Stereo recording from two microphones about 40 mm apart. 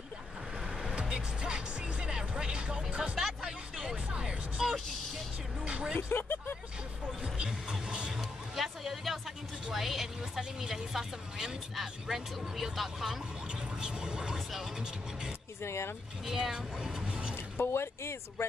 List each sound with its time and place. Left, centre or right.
0.9 s music: right
3.2 s music: centre
4.6 s music: centre
5.9 s a sound: left
8.2 s music: centre
9.7 s a sound: centre
10.6 s speech: centre
13.7 s speech: right
15.6 s speech: left
16.3 s speech: centre
16.5 s speech: right
17.6 s a sound: left